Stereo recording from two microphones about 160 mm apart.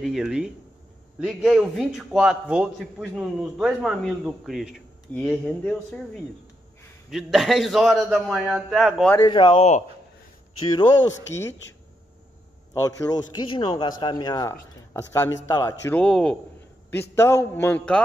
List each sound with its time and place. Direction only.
0.0 s a man's voice: centre (ahead or behind)
9.3 s speech: 35° left (ahead or behind)
10.7 s a man's voice: 25° left (ahead or behind)
12.8 s a man's voice: 25° left (ahead or behind)
15.9 s a man's voice: 5° left (ahead or behind)
17.1 s speech: 15° left (ahead or behind)